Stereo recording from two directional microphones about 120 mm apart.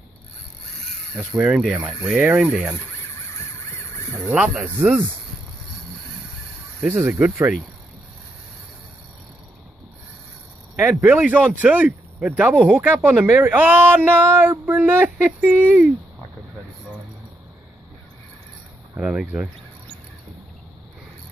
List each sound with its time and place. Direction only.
1.1 s speech: 10° right (ahead or behind)
4.3 s speech: 10° right (ahead or behind)
7.0 s speech: 15° right (ahead or behind)
10.8 s speech: 20° right (ahead or behind)
18.9 s speech: 10° right (ahead or behind)